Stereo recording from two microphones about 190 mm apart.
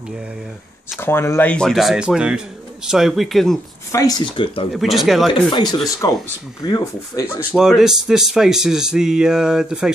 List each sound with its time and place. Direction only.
0.9 s speech: 10° left (ahead or behind)
3.9 s speech: 20° left (ahead or behind)
4.7 s speech: centre (ahead or behind)
5.3 s speech: 25° left (ahead or behind)
7.5 s speech: centre (ahead or behind)